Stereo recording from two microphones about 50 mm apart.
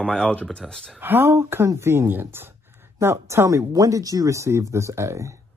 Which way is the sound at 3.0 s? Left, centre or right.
Right.